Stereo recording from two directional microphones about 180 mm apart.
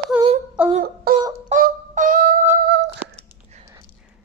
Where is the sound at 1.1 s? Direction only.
55° right (ahead or behind).